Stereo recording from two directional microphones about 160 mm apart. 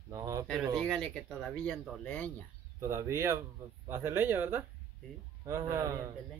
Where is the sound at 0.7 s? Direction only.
Centre (ahead or behind).